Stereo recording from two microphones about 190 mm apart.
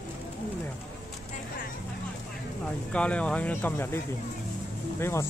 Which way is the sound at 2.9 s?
5° left (ahead or behind).